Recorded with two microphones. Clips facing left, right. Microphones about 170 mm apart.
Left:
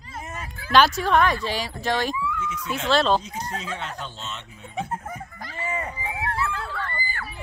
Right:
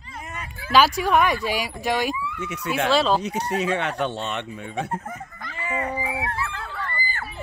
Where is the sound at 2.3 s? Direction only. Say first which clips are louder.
Right 4 dB; 70° right (ahead or behind).